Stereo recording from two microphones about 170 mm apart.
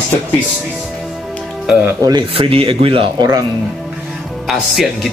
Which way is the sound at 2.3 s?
35° right (ahead or behind).